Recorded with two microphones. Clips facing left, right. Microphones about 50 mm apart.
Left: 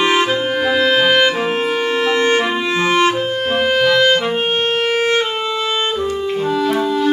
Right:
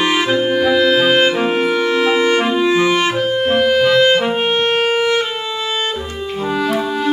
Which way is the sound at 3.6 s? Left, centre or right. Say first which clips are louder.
Right 1 dB; left.